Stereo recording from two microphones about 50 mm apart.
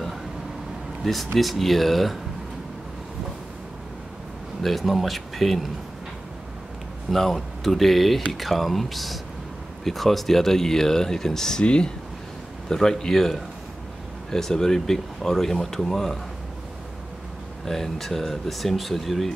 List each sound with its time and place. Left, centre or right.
1.0 s speech: centre
4.6 s speech: centre
7.1 s speech: centre
12.6 s speech: centre
17.6 s speech: centre